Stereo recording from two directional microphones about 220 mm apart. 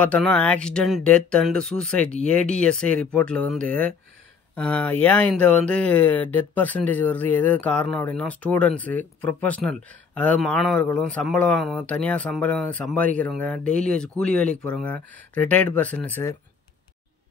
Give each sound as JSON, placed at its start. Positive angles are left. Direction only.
{"t": 0.0, "sound": "speech", "side_deg": 5}